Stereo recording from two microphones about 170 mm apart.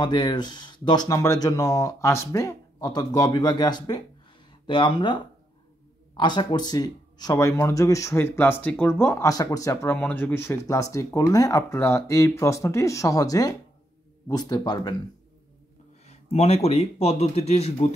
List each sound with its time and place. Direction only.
0.0 s speech: 25° left (ahead or behind)
16.1 s speech: 40° left (ahead or behind)